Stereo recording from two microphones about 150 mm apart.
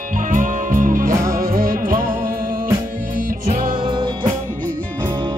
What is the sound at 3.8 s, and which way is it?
Music, 35° right (ahead or behind).